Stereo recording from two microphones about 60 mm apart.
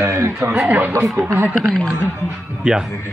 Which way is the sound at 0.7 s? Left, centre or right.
Right.